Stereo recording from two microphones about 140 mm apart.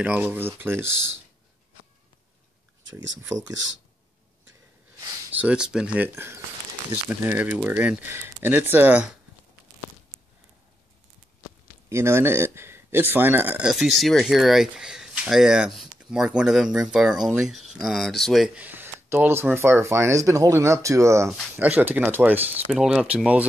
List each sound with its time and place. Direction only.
0.0 s speech: 10° right (ahead or behind)
3.2 s speech: 25° right (ahead or behind)
5.3 s speech: 10° right (ahead or behind)
11.9 s speech: 20° right (ahead or behind)